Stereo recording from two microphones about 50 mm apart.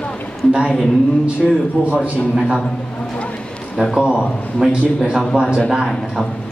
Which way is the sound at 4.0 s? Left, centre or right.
Centre.